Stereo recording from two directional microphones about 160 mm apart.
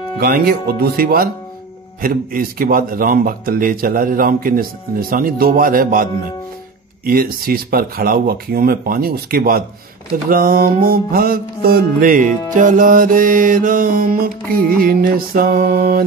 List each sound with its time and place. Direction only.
0.2 s speech: 70° right (ahead or behind)
2.0 s music: 65° right (ahead or behind)
7.1 s speech: 65° right (ahead or behind)
10.3 s music: 65° right (ahead or behind)